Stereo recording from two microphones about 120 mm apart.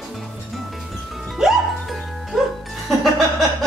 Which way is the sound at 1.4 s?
Centre (ahead or behind).